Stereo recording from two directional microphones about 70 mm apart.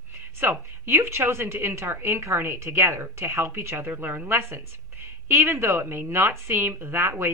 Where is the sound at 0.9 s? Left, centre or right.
Right.